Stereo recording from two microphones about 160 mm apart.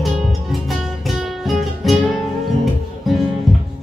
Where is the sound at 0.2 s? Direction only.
Centre (ahead or behind).